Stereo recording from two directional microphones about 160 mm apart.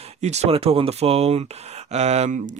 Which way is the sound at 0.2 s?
45° right (ahead or behind).